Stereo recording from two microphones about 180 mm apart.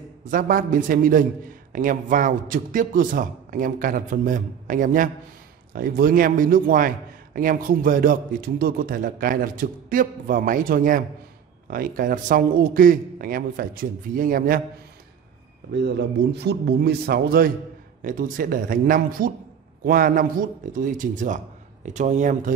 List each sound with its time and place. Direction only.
0.3 s a man's voice: 50° right (ahead or behind)
16.3 s a man's voice: 70° right (ahead or behind)
18.0 s a man's voice: 45° right (ahead or behind)